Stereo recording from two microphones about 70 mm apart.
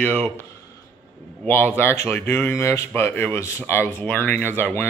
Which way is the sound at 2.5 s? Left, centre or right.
Left.